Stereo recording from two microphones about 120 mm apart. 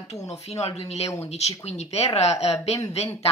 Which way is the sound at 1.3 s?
65° left (ahead or behind).